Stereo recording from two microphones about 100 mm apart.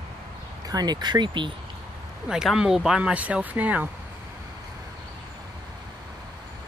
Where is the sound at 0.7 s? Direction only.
40° right (ahead or behind).